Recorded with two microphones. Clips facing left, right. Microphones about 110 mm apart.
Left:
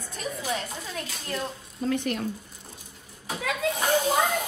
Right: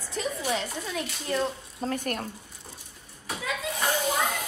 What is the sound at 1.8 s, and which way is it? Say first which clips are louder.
Speech: left 3 dB; 45° right (ahead or behind).